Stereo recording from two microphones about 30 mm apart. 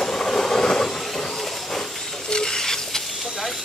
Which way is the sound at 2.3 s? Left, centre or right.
Left.